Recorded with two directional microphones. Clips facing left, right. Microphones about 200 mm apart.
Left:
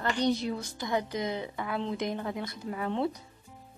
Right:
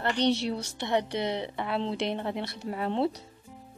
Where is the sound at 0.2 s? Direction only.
80° right.